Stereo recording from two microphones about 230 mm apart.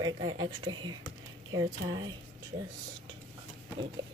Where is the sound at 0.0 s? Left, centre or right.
Centre.